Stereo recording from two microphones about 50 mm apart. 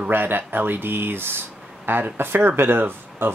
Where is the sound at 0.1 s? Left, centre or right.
Right.